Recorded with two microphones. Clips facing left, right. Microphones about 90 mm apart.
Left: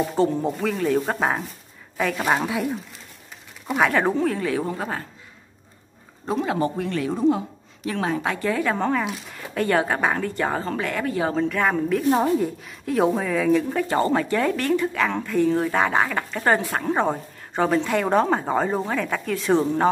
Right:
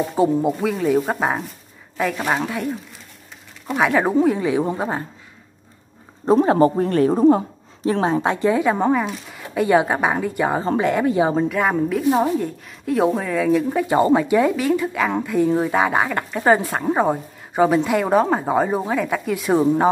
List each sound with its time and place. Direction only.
0.0 s a woman's voice: 10° right (ahead or behind)
6.2 s a woman's voice: 35° right (ahead or behind); by 9.0 s 15° right (ahead or behind)
9.0 s a woman's voice: centre (ahead or behind)